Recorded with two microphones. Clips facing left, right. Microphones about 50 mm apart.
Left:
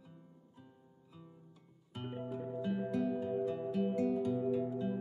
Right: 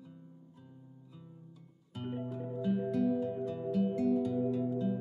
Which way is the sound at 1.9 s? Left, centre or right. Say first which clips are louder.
Right 2 dB; centre.